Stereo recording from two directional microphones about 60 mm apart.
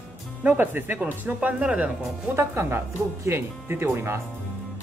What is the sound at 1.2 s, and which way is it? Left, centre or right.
Speech, right.